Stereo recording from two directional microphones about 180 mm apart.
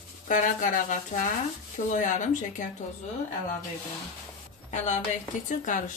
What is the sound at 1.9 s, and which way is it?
Speech, 45° left (ahead or behind).